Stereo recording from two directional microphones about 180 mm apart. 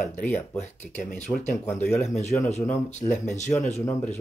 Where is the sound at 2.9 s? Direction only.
40° left (ahead or behind).